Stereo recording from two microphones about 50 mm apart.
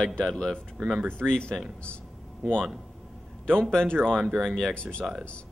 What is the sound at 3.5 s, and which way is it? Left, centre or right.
Speech, centre.